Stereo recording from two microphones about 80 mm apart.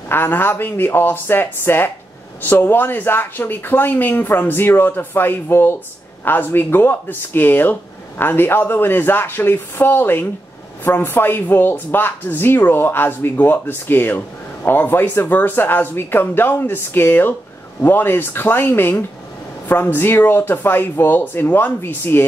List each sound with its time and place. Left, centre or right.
0.1 s speech: left